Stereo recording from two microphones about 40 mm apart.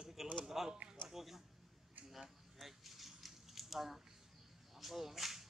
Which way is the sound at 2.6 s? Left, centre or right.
Centre.